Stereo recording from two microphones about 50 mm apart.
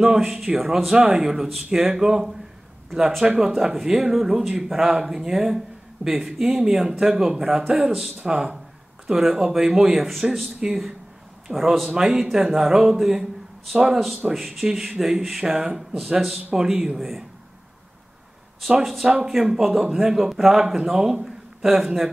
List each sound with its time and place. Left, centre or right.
0.0 s speech: centre
9.0 s speech: centre
10.6 s speech: centre
11.4 s speech: centre
18.7 s speech: centre